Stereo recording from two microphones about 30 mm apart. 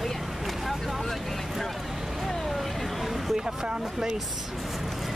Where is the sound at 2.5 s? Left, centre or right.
Centre.